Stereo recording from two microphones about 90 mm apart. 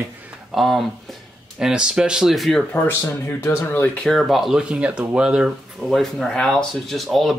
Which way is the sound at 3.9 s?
5° left (ahead or behind).